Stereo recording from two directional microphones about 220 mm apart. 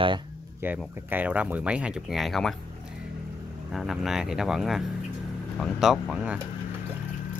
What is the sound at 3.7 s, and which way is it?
Speech, centre (ahead or behind).